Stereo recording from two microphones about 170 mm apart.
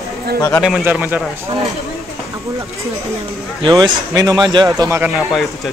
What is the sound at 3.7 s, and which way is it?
Speech, 20° right (ahead or behind).